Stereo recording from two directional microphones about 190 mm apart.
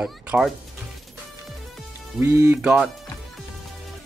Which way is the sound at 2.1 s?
15° right (ahead or behind).